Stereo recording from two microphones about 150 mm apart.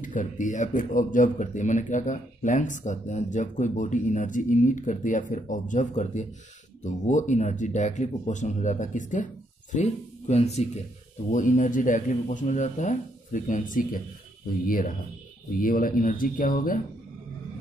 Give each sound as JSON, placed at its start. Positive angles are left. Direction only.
{"t": 0.0, "sound": "speech", "side_deg": 60}
{"t": 11.3, "sound": "speech", "side_deg": 55}
{"t": 15.5, "sound": "speech", "side_deg": 70}